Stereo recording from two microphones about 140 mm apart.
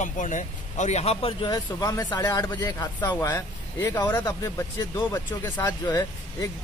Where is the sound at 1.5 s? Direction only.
25° left (ahead or behind).